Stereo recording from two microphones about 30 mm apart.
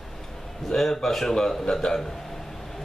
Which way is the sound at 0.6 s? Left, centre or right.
Centre.